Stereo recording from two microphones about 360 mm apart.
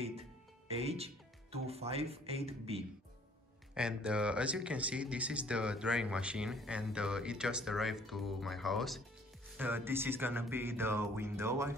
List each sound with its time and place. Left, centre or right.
0.7 s speech: centre
3.7 s speech: centre